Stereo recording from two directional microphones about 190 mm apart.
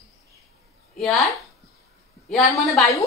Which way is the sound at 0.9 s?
Centre (ahead or behind).